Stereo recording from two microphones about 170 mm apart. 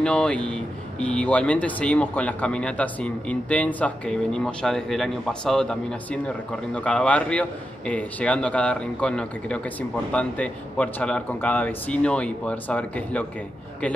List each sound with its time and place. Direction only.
0.0 s speech: 5° left (ahead or behind)